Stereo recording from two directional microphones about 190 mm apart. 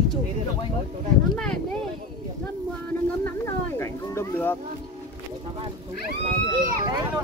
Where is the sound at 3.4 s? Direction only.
15° left (ahead or behind).